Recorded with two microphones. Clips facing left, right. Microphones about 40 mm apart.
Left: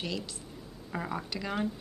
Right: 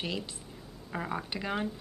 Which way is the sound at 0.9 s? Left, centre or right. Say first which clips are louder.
Even; centre.